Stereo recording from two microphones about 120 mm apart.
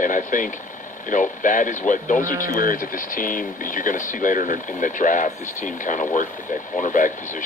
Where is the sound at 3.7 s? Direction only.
90° left.